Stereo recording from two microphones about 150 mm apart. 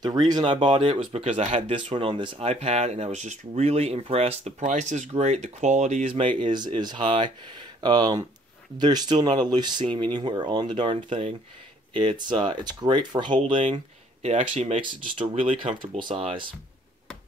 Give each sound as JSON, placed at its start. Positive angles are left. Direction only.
{"t": 0.0, "sound": "speech", "side_deg": -25}
{"t": 0.9, "sound": "speech", "side_deg": -45}
{"t": 14.2, "sound": "speech", "side_deg": -50}
{"t": 15.1, "sound": "speech", "side_deg": -35}